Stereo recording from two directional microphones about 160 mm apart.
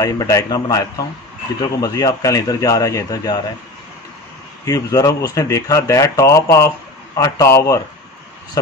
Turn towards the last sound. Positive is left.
turn(degrees=20)  # may be behind; listen again after turning